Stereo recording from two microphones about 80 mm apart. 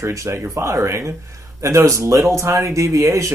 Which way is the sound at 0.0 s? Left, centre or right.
Right.